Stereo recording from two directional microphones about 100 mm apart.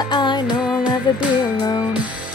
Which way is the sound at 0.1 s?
50° left (ahead or behind).